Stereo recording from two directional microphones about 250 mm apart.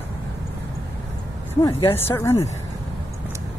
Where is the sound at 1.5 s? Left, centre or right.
Centre.